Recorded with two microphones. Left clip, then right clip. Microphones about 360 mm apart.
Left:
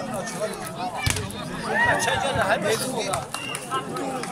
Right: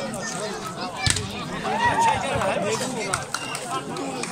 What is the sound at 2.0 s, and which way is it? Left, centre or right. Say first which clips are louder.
Chatter: right 2 dB; left.